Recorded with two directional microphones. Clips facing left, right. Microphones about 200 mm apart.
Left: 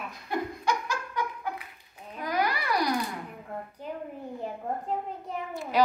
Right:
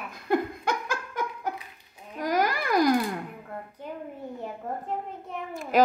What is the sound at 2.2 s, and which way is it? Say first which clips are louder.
Babbling: right 3 dB; 45° right (ahead or behind).